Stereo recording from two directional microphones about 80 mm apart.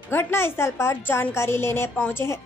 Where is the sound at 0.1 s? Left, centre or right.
Left.